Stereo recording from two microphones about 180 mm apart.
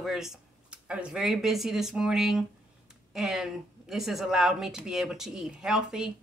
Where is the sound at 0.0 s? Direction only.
Centre (ahead or behind).